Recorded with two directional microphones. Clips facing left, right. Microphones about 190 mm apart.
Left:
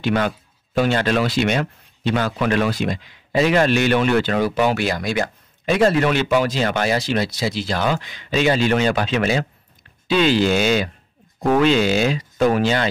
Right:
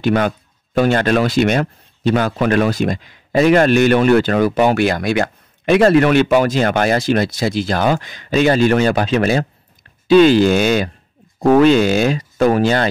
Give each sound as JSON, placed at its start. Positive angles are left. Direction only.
{"t": 0.0, "sound": "speech", "side_deg": -50}